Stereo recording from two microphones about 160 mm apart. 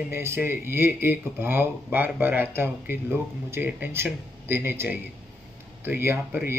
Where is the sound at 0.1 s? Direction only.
15° right (ahead or behind).